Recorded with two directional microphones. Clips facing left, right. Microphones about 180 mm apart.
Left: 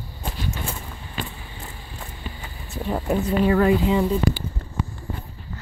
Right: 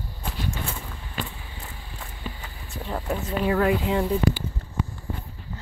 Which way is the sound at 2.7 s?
15° left (ahead or behind).